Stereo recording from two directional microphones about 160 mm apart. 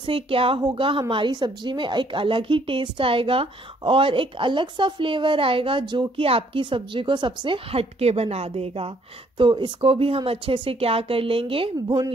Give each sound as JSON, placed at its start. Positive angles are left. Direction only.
{"t": 0.0, "sound": "a woman's voice", "side_deg": -35}